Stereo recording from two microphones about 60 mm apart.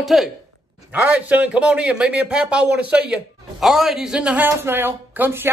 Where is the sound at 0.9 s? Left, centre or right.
Right.